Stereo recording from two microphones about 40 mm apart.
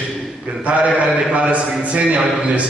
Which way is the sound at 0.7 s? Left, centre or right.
Right.